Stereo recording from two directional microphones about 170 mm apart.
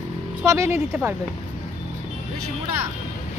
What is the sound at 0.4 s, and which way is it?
Speech, 15° right (ahead or behind).